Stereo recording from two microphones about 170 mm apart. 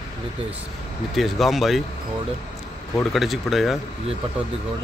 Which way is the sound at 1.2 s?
Centre (ahead or behind).